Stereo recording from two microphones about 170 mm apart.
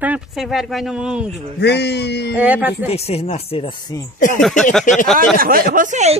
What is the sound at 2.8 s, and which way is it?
Speech, 35° left (ahead or behind).